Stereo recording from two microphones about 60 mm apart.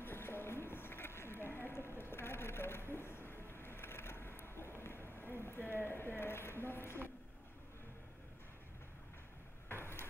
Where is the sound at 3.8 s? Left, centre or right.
Left.